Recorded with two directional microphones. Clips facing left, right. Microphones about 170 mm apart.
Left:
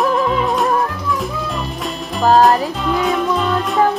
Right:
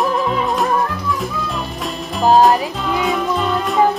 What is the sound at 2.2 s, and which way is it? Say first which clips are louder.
Music: even; centre (ahead or behind).